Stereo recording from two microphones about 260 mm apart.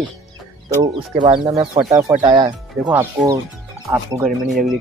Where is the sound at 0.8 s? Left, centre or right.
Centre.